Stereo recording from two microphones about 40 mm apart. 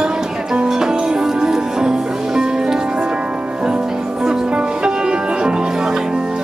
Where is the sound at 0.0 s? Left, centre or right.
Centre.